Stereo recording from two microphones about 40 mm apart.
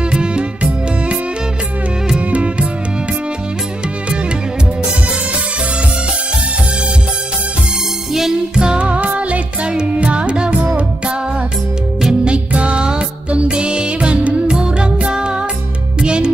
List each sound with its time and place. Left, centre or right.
0.1 s music: right
2.1 s music: right
8.1 s music: centre
8.6 s music: right
12.1 s music: right